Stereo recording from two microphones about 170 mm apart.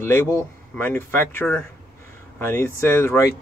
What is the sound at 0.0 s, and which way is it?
Speech, 15° left (ahead or behind).